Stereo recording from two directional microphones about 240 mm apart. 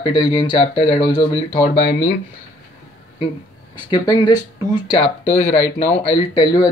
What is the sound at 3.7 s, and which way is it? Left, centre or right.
A man's voice, centre.